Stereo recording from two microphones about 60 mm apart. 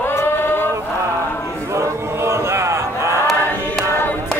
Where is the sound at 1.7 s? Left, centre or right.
Right.